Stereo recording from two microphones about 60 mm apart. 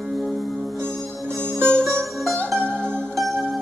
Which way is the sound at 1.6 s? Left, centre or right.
Centre.